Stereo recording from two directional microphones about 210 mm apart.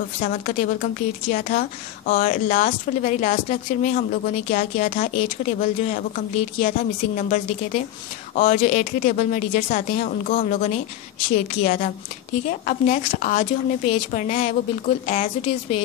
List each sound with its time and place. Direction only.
0.2 s a woman's voice: 40° left (ahead or behind)